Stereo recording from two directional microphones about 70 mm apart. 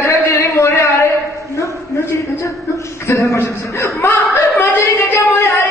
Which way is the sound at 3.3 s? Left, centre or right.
Left.